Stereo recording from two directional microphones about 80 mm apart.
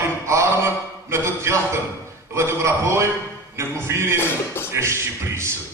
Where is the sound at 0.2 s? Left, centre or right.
Right.